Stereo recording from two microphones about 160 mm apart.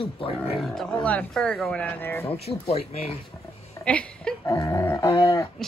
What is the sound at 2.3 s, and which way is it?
Speech, 40° left (ahead or behind).